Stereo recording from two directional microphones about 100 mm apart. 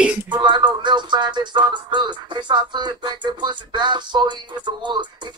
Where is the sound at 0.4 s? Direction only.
50° right (ahead or behind).